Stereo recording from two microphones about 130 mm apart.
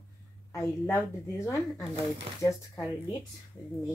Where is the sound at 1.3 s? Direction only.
25° left (ahead or behind).